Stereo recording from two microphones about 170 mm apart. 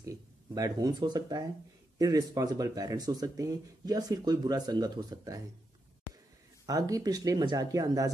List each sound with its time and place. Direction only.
0.0 s speech: 20° right (ahead or behind)
6.6 s speech: 20° right (ahead or behind)